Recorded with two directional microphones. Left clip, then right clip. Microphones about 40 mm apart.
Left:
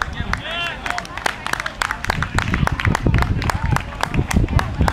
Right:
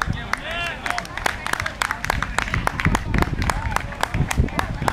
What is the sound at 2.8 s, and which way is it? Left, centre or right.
Run, left.